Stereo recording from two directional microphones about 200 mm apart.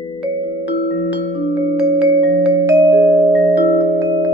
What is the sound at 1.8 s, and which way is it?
Music, 5° right (ahead or behind).